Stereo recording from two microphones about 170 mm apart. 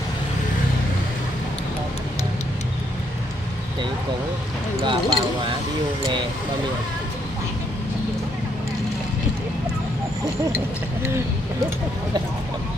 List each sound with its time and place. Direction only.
4.8 s speech: 30° right (ahead or behind)